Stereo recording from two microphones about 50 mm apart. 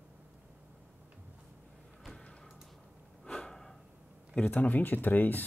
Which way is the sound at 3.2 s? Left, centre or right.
Centre.